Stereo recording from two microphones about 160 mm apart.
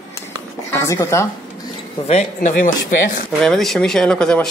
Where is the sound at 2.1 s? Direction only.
45° left (ahead or behind).